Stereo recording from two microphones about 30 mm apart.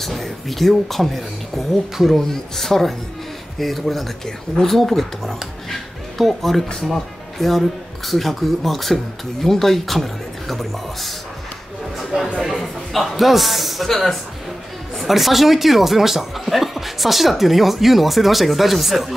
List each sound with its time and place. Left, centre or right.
0.0 s a man's voice: centre
12.4 s a sound: centre
13.8 s a man's voice: centre
15.0 s speech: centre